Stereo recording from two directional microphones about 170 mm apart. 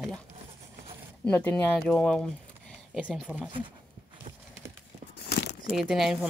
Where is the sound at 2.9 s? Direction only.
5° right (ahead or behind).